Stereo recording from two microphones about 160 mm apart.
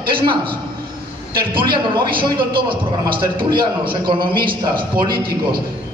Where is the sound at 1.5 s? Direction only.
30° right (ahead or behind).